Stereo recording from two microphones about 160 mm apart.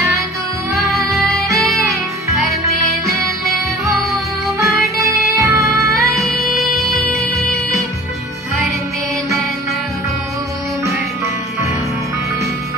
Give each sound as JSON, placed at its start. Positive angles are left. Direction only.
{"t": 0.9, "sound": "music", "side_deg": 0}
{"t": 5.4, "sound": "music", "side_deg": -20}
{"t": 6.1, "sound": "music", "side_deg": 0}